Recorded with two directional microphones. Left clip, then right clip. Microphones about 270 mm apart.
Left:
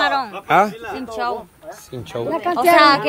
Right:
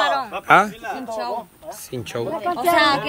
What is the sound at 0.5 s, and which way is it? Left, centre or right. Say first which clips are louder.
Speech: right 1 dB; centre.